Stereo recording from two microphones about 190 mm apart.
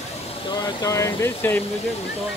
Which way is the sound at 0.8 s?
15° left (ahead or behind).